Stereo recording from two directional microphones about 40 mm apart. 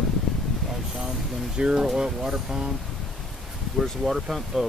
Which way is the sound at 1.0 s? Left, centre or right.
Right.